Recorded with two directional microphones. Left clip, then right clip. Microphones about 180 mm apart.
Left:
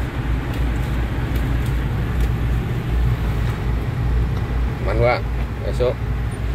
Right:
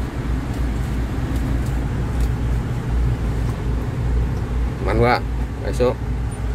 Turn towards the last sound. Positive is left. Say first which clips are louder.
# right 1 dB
turn(degrees=-15)  # may be behind; listen again after turning